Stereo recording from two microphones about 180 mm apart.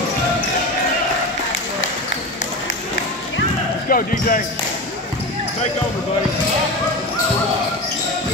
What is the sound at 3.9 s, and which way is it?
Speech, 50° left (ahead or behind).